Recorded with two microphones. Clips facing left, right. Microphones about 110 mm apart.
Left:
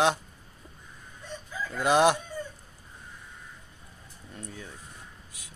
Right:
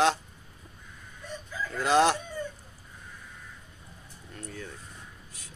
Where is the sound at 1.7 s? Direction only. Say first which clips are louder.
Left 1 dB; 15° left (ahead or behind).